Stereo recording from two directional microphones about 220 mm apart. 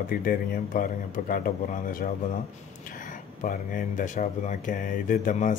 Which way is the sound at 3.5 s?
35° left (ahead or behind).